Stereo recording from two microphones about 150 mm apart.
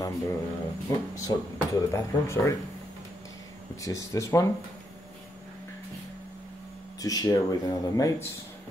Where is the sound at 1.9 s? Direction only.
20° left (ahead or behind).